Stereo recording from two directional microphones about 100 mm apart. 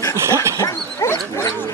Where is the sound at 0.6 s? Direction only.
30° left (ahead or behind).